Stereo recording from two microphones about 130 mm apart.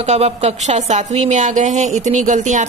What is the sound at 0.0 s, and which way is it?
A woman's voice, 55° right (ahead or behind).